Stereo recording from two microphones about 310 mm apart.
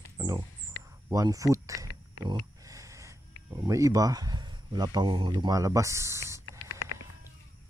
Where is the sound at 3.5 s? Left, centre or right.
Centre.